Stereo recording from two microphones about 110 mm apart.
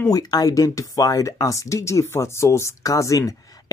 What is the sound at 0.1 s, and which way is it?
Speech, 35° left (ahead or behind).